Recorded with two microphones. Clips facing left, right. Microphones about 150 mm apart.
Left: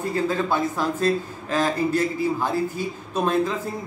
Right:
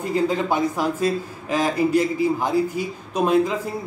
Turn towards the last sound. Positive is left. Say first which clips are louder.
# right 3 dB
turn(degrees=-15)  # may be behind; listen again after turning